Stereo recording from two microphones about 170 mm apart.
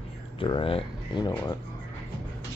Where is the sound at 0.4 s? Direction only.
30° left (ahead or behind).